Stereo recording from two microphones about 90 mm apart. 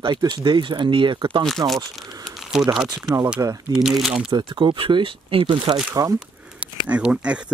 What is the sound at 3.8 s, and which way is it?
Speech, 5° right (ahead or behind).